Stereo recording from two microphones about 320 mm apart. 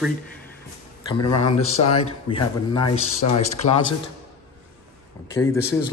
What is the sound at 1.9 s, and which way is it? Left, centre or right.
Speech, centre.